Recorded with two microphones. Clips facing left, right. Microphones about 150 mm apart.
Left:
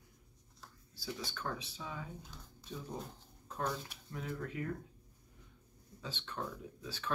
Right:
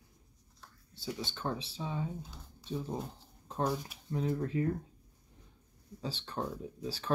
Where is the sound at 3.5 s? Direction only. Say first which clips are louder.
Right 5 dB; 30° right (ahead or behind).